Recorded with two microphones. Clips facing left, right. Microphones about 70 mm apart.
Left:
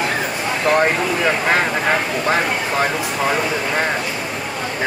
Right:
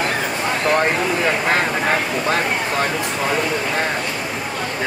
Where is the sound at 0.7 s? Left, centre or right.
Centre.